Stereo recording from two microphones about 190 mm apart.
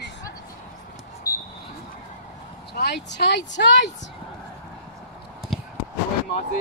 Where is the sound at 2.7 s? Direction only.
60° left (ahead or behind).